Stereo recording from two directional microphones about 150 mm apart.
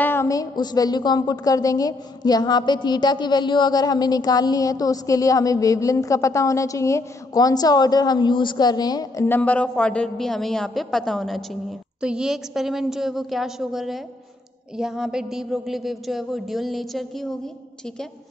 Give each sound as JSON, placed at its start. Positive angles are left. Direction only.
{"t": 0.0, "sound": "a woman's voice", "side_deg": 15}